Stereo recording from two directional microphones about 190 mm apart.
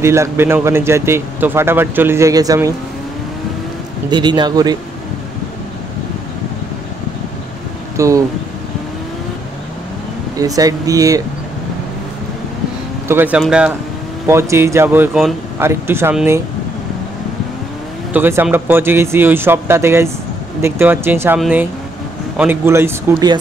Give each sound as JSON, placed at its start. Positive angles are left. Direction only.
{"t": 0.0, "sound": "speech", "side_deg": -15}
{"t": 4.1, "sound": "speech", "side_deg": -25}
{"t": 8.0, "sound": "speech", "side_deg": -15}
{"t": 10.4, "sound": "speech", "side_deg": -20}
{"t": 13.1, "sound": "speech", "side_deg": -10}
{"t": 18.1, "sound": "speech", "side_deg": -10}